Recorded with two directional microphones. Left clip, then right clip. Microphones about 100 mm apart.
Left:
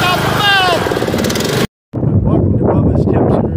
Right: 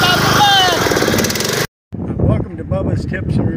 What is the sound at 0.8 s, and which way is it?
Vehicle, 90° right.